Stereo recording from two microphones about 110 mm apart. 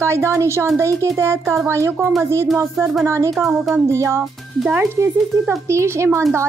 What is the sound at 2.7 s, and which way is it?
Speech, centre (ahead or behind).